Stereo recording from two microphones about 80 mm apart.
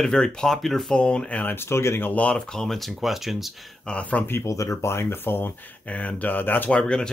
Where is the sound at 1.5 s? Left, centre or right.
Left.